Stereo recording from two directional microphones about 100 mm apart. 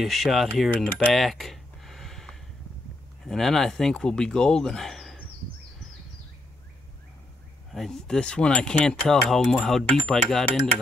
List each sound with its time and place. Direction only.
0.0 s speech: centre (ahead or behind)
0.9 s a sound: centre (ahead or behind)
3.3 s speech: 5° left (ahead or behind)
7.7 s speech: 5° left (ahead or behind)